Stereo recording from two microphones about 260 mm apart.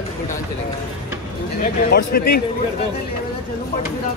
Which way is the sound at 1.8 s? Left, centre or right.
Left.